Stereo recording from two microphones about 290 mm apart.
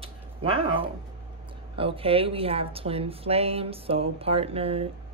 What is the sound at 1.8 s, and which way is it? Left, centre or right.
A woman's voice, centre.